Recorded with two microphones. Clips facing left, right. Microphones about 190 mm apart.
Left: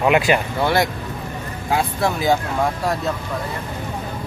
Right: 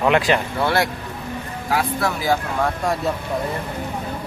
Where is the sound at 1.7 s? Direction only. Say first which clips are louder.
Left 1 dB; 25° left (ahead or behind).